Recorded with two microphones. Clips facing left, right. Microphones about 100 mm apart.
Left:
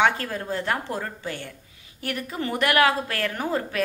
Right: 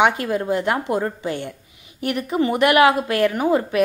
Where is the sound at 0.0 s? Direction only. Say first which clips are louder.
Right 4 dB; 15° right (ahead or behind).